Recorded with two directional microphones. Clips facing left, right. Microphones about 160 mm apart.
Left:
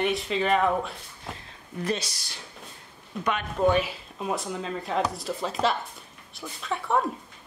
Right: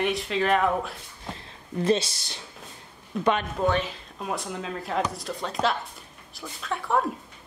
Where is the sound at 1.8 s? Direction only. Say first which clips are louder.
Right 6 dB; 25° right (ahead or behind).